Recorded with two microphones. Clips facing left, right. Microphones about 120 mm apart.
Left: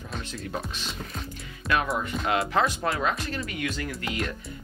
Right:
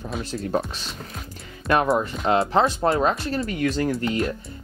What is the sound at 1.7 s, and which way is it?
Speech, 35° right (ahead or behind).